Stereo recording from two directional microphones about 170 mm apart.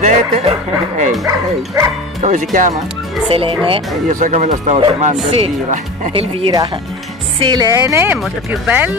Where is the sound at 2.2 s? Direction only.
45° right (ahead or behind).